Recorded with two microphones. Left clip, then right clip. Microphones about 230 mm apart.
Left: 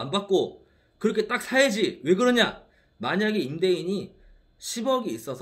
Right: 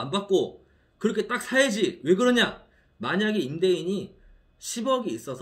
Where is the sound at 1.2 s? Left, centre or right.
Right.